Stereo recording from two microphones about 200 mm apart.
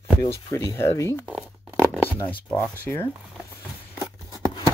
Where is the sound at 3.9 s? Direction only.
15° left (ahead or behind).